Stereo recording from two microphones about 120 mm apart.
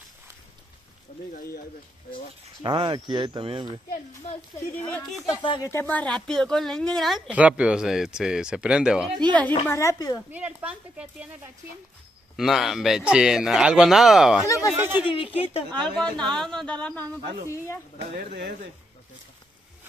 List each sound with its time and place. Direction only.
2.6 s speech: 45° right (ahead or behind)
4.7 s speech: 15° left (ahead or behind)
7.2 s speech: 10° right (ahead or behind)
9.4 s a woman's voice: 20° left (ahead or behind)
10.3 s speech: 10° right (ahead or behind)
12.4 s speech: centre (ahead or behind)
14.8 s speech: 15° right (ahead or behind)
15.0 s a woman's voice: 50° left (ahead or behind)
15.7 s speech: 5° left (ahead or behind)